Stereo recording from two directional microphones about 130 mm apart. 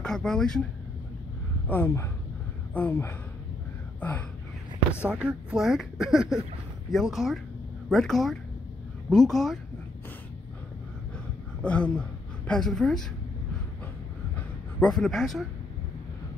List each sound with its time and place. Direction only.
0.0 s speech: 5° left (ahead or behind)
1.7 s speech: 15° left (ahead or behind)
5.0 s speech: 10° right (ahead or behind)
11.6 s speech: 10° left (ahead or behind)
14.3 s a sound: 5° left (ahead or behind)